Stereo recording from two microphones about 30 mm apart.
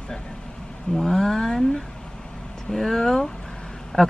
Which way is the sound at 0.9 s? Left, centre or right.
Centre.